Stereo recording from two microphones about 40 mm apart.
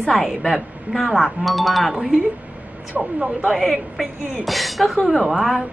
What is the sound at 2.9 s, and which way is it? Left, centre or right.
Speech, right.